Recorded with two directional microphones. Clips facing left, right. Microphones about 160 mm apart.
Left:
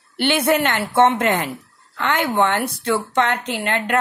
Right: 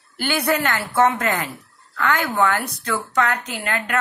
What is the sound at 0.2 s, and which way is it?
Speech, 25° left (ahead or behind).